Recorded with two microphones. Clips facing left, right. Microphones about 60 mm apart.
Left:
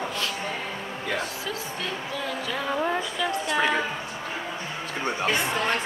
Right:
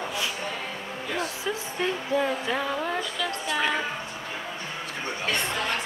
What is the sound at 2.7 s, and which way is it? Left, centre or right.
Music, centre.